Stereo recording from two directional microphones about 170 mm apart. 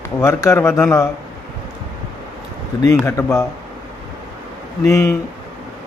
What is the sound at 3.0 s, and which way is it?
Speech, 15° left (ahead or behind).